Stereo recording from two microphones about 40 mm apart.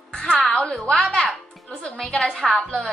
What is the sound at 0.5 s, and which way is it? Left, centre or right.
Speech, left.